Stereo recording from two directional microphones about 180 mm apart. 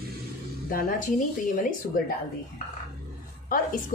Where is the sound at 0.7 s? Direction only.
50° left (ahead or behind).